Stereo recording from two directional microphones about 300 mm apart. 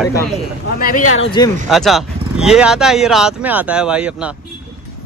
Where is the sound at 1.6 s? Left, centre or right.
Centre.